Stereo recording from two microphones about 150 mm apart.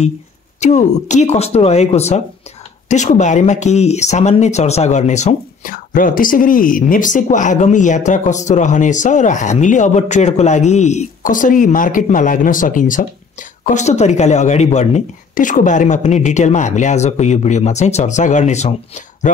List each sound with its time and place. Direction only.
0.6 s speech: 50° left (ahead or behind)